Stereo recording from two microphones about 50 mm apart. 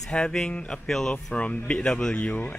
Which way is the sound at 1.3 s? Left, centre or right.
Left.